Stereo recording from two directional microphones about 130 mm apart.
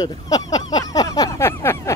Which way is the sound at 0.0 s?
30° left (ahead or behind).